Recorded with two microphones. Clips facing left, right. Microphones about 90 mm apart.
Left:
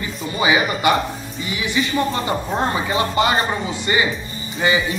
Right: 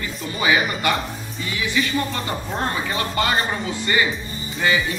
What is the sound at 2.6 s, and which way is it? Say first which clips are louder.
Speech: left 3 dB; 20° left (ahead or behind).